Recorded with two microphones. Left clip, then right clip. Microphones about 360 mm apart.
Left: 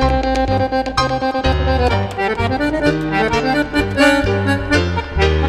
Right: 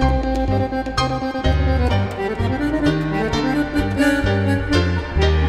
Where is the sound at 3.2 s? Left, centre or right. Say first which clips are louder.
Left 5 dB; centre.